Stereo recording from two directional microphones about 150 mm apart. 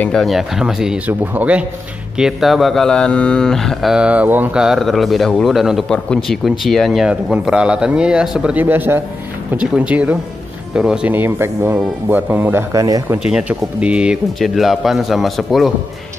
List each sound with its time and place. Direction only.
0.0 s speech: 5° left (ahead or behind); by 13.2 s 25° right (ahead or behind)
13.3 s speech: 10° right (ahead or behind)